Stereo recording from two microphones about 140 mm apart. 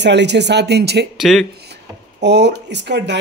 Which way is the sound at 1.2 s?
Centre (ahead or behind).